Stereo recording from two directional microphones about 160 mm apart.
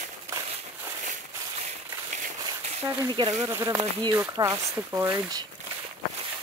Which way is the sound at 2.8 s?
20° right (ahead or behind).